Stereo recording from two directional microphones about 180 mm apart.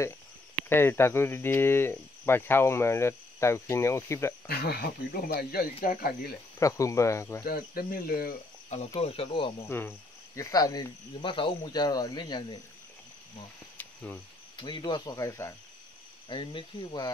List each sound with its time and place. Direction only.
0.6 s speech: 10° left (ahead or behind)
4.5 s speech: 60° left (ahead or behind)
6.6 s speech: 15° left (ahead or behind)
7.4 s speech: 55° left (ahead or behind)
9.0 s speech: 30° left (ahead or behind)
9.7 s cricket: 10° left (ahead or behind)
13.7 s cricket: 10° left (ahead or behind)
14.6 s cricket: 25° left (ahead or behind)